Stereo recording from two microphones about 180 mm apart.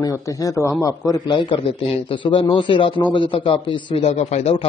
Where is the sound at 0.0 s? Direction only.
20° left (ahead or behind).